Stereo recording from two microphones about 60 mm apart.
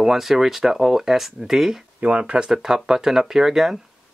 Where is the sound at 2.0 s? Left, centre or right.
Centre.